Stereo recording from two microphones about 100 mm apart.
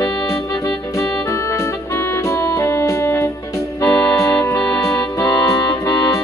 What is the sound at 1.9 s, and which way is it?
Music, 30° left (ahead or behind).